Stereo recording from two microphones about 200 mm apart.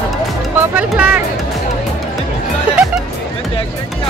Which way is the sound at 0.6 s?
10° right (ahead or behind).